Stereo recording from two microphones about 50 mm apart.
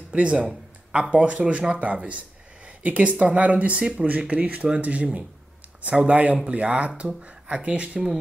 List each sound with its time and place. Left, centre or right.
0.1 s speech: right